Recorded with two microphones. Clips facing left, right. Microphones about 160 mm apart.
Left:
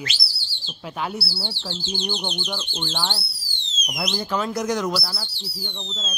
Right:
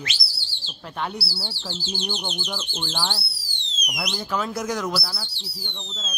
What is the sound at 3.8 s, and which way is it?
Speech, 25° left (ahead or behind).